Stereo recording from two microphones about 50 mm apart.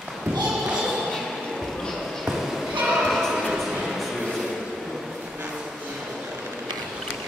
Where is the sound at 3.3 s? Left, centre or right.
Centre.